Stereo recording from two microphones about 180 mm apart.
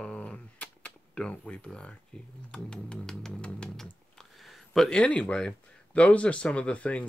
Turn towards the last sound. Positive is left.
turn(degrees=5)  # may be behind; listen again after turning